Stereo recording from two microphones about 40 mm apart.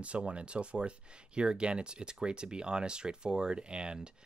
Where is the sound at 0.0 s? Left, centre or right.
Right.